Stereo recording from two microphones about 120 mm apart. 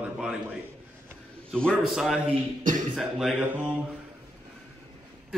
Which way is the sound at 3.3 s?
15° right (ahead or behind).